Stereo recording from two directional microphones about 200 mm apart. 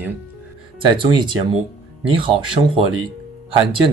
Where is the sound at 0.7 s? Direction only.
25° right (ahead or behind).